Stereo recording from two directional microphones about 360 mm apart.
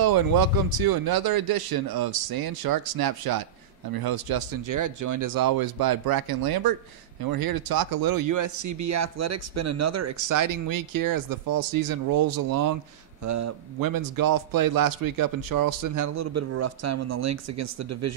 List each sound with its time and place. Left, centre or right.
0.0 s a man's voice: right
13.2 s speech: right
13.8 s speech: right